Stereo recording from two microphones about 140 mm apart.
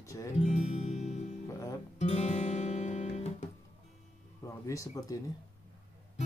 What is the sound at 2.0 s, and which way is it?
Guitar, 55° left (ahead or behind).